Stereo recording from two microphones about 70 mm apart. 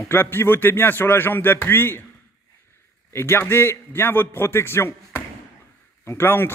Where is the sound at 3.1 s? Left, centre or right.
Left.